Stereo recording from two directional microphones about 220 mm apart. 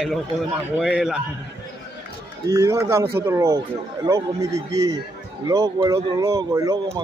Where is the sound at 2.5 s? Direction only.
15° right (ahead or behind).